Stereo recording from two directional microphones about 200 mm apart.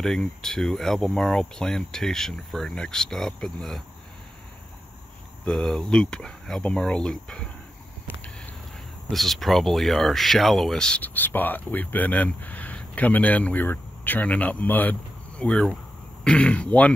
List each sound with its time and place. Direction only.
0.0 s speech: 5° left (ahead or behind)
5.4 s speech: 5° left (ahead or behind)
9.1 s speech: centre (ahead or behind)